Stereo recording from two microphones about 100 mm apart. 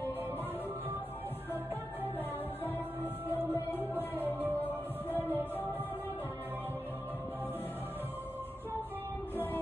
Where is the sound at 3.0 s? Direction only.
20° right (ahead or behind).